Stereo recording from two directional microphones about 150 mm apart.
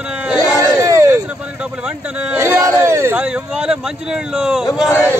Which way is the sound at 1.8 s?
5° right (ahead or behind).